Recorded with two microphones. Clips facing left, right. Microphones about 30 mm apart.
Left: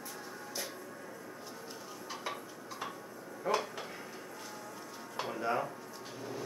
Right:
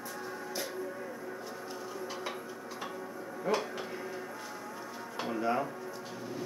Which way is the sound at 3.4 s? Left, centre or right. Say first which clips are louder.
Right 1 dB; centre.